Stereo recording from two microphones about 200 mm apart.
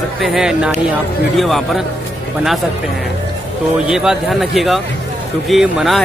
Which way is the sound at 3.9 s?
Centre (ahead or behind).